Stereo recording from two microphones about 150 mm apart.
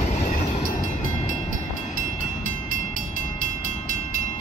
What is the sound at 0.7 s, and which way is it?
Train, 55° left (ahead or behind).